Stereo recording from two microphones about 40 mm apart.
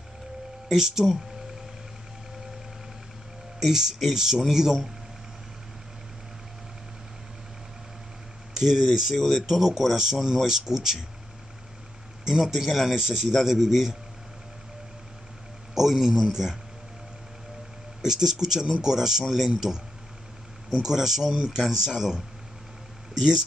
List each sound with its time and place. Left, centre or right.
0.7 s a man's voice: centre
3.5 s a man's voice: centre
8.5 s a man's voice: centre
9.1 s speech: centre
9.5 s a man's voice: centre
12.3 s a man's voice: centre
15.7 s a man's voice: centre
18.0 s a man's voice: centre
20.7 s a man's voice: centre